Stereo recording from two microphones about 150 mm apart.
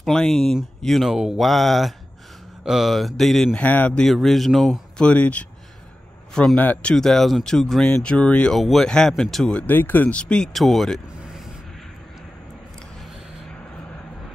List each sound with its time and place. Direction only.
0.0 s speech: centre (ahead or behind)